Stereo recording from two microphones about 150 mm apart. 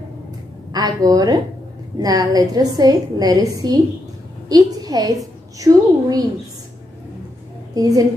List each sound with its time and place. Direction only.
0.7 s a woman's voice: 25° right (ahead or behind)
7.7 s a woman's voice: 25° right (ahead or behind)